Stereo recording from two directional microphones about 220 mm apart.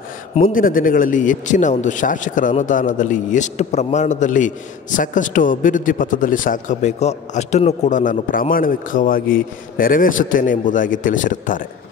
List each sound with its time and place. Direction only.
0.4 s a man's voice: 40° left (ahead or behind)